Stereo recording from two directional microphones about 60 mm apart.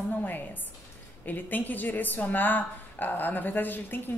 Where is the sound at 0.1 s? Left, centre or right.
Left.